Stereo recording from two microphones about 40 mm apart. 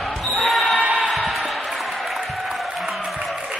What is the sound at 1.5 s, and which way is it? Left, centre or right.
Music, centre.